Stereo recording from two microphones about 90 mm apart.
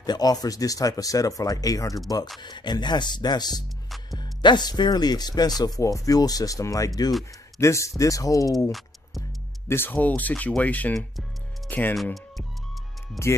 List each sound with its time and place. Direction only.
0.0 s speech: 45° left (ahead or behind)
2.4 s speech: 55° left (ahead or behind)
9.7 s speech: 20° left (ahead or behind)
11.0 s music: 5° left (ahead or behind)
11.9 s speech: centre (ahead or behind)
13.2 s speech: 35° left (ahead or behind)